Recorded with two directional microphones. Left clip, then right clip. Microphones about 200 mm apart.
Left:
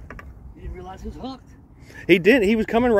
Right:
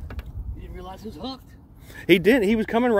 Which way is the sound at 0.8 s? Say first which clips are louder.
Even; 30° left (ahead or behind).